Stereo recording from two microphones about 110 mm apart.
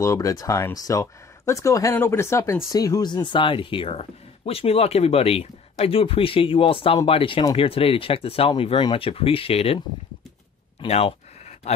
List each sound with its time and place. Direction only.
0.0 s speech: 30° left (ahead or behind); by 9.8 s 65° left (ahead or behind)
10.9 s speech: 65° left (ahead or behind)